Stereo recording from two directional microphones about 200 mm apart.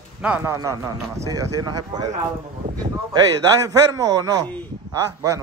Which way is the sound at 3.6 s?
15° right (ahead or behind).